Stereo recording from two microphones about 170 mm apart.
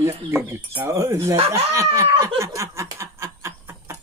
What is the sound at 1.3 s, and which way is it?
Speech, 35° right (ahead or behind).